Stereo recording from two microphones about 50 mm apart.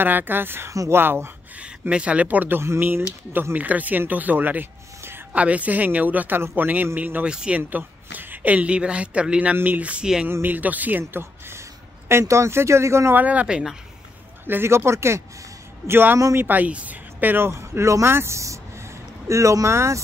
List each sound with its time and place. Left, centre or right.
0.0 s a woman's voice: right
0.7 s speech: right
0.9 s speech: right
1.6 s speech: right
3.5 s a woman's voice: right
5.3 s a woman's voice: right
7.2 s speech: centre
7.5 s speech: right
12.1 s speech: right
13.1 s speech: right
14.4 s speech: right
14.9 s speech: right
15.9 s speech: right
17.4 s speech: right